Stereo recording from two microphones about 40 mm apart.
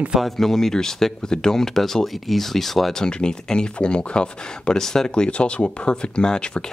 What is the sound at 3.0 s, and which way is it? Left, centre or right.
Speech, left.